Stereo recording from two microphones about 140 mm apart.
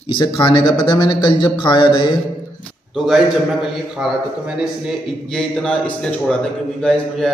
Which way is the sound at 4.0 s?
5° right (ahead or behind).